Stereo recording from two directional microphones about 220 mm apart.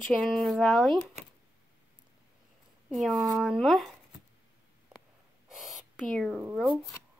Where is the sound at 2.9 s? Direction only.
Centre (ahead or behind).